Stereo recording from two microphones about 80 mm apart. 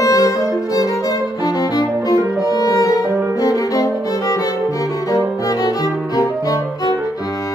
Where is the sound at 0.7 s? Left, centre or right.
Left.